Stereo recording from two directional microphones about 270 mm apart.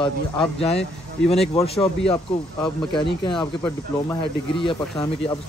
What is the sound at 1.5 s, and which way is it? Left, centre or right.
Speech, left.